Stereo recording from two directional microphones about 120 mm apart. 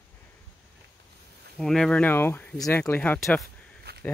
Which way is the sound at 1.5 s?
5° left (ahead or behind).